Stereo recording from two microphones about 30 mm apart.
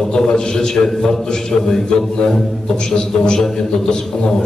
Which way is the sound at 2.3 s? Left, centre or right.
Centre.